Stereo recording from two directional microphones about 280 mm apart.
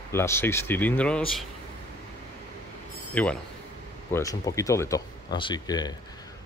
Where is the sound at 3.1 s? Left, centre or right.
Centre.